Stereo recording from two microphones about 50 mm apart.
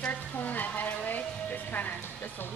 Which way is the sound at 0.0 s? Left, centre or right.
Left.